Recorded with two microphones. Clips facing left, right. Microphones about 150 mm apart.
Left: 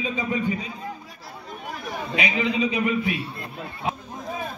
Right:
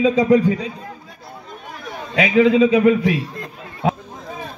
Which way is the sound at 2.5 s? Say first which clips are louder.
Right 10 dB; 90° right.